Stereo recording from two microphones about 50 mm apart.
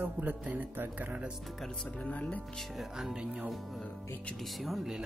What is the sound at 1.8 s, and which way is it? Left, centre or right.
Speech, left.